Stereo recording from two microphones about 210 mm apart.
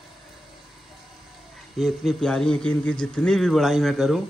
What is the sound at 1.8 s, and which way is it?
A man's voice, centre (ahead or behind).